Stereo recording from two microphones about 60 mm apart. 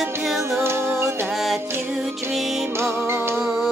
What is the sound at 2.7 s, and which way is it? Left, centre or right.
Music, right.